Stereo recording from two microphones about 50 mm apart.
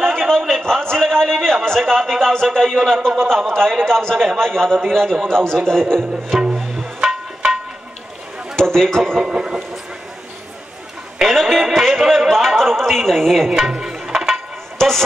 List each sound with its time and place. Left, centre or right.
0.0 s a sound: centre
3.1 s speech: centre
6.8 s music: centre
8.7 s speech: centre
9.2 s a sound: centre
11.1 s a man's voice: centre
13.5 s music: centre